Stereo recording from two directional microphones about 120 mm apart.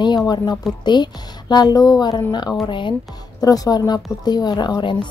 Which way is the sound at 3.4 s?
30° left (ahead or behind).